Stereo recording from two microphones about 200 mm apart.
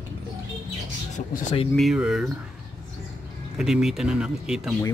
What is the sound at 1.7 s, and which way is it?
Speech, centre (ahead or behind).